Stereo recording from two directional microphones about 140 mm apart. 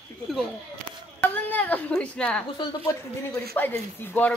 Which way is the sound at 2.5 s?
20° left (ahead or behind).